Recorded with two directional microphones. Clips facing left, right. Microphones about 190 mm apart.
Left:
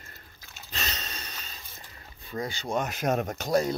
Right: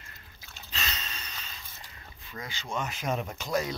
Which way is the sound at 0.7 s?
40° left (ahead or behind).